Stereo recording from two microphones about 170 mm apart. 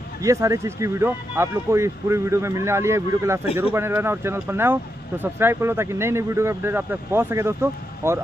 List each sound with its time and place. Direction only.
0.2 s speech: 20° right (ahead or behind)